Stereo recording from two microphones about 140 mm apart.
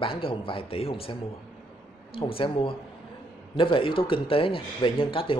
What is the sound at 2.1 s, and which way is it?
Speech, 40° left (ahead or behind).